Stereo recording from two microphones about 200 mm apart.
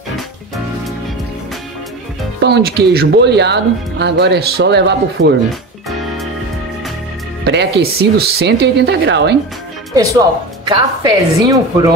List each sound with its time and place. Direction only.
2.4 s speech: 50° right (ahead or behind)
7.4 s speech: 55° right (ahead or behind)
10.7 s a woman's voice: 20° right (ahead or behind)